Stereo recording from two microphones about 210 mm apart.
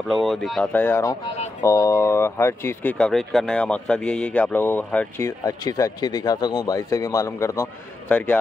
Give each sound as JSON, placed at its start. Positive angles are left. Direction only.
{"t": 0.1, "sound": "speech", "side_deg": 0}